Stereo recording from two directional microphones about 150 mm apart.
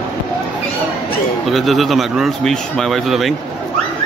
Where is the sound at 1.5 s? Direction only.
Centre (ahead or behind).